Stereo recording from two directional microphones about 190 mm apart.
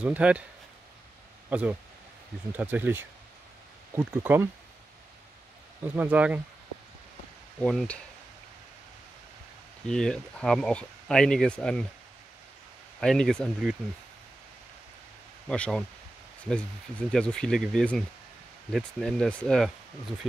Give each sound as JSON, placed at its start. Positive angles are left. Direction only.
{"t": 0.0, "sound": "speech", "side_deg": -5}
{"t": 1.5, "sound": "speech", "side_deg": -5}
{"t": 5.9, "sound": "speech", "side_deg": -10}
{"t": 7.6, "sound": "speech", "side_deg": 5}
{"t": 9.8, "sound": "speech", "side_deg": 5}
{"t": 13.0, "sound": "speech", "side_deg": 5}
{"t": 15.4, "sound": "speech", "side_deg": 5}
{"t": 17.1, "sound": "speech", "side_deg": 5}